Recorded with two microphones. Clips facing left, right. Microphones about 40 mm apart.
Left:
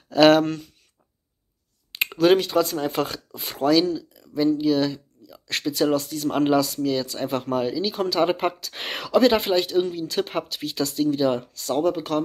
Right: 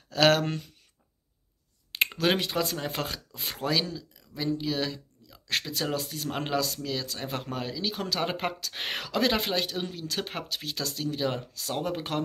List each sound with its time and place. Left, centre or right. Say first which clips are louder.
0.1 s speech: left 7 dB; centre
2.1 s speech: left 11 dB; centre
3.6 s speech: left 10 dB; centre
11.9 s speech: left 6 dB; right